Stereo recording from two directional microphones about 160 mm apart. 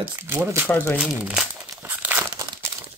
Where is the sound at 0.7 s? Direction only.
10° left (ahead or behind).